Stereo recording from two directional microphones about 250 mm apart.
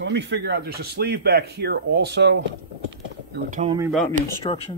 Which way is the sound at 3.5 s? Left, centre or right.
Right.